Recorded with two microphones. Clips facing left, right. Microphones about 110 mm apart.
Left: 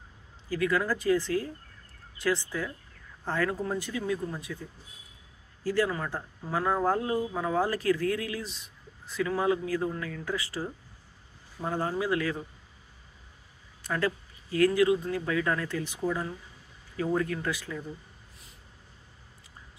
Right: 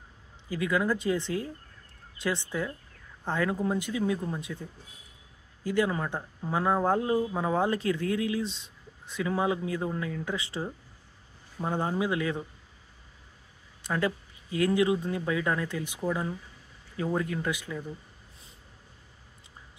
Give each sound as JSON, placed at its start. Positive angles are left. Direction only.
{"t": 0.5, "sound": "speech", "side_deg": -20}
{"t": 5.6, "sound": "speech", "side_deg": -20}
{"t": 11.7, "sound": "speech", "side_deg": -20}
{"t": 13.8, "sound": "speech", "side_deg": -20}